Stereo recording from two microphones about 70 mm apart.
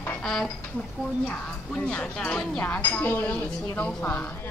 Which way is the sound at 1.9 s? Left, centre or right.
Centre.